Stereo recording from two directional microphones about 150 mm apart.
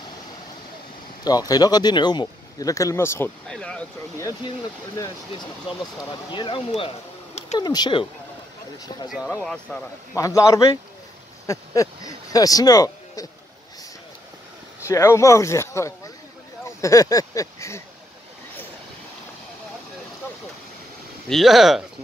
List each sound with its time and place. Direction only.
1.2 s speech: 25° left (ahead or behind)
3.4 s speech: 5° left (ahead or behind)
6.3 s speech: 35° left (ahead or behind)
9.4 s speech: 5° left (ahead or behind)
10.1 s a man's voice: 20° left (ahead or behind)
14.9 s speech: 20° left (ahead or behind)
21.3 s speech: centre (ahead or behind)